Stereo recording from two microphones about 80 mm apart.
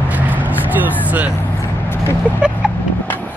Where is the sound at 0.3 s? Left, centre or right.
Right.